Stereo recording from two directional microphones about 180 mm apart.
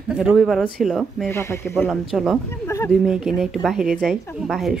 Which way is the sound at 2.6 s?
15° left (ahead or behind).